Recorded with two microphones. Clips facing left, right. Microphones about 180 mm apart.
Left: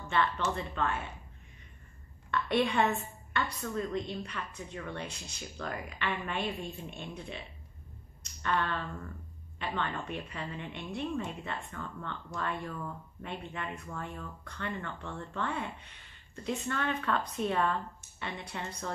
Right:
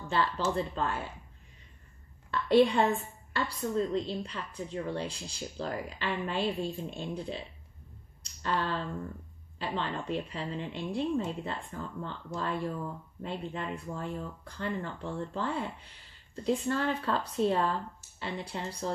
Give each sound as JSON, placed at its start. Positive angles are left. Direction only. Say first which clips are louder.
{"t": 0.1, "sound": "a woman's voice", "louder": "right 1 dB", "side_deg": -35}
{"t": 2.4, "sound": "a woman's voice", "louder": "right 5 dB", "side_deg": -30}
{"t": 8.2, "sound": "finger snapping", "louder": "even", "side_deg": -30}
{"t": 9.6, "sound": "a woman's voice", "louder": "right 1 dB", "side_deg": -30}